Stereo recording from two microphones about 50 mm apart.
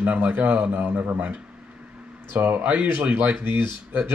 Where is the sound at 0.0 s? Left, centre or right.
Right.